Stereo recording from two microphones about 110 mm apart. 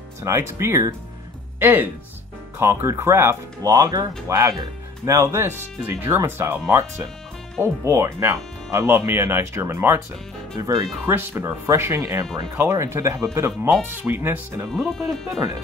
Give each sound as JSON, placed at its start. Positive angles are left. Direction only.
{"t": 0.2, "sound": "speech", "side_deg": -25}
{"t": 7.6, "sound": "speech", "side_deg": -25}
{"t": 10.6, "sound": "speech", "side_deg": -35}
{"t": 11.1, "sound": "speech", "side_deg": -20}
{"t": 14.7, "sound": "speech", "side_deg": 5}